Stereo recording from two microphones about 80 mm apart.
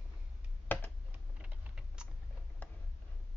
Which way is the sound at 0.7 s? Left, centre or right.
Left.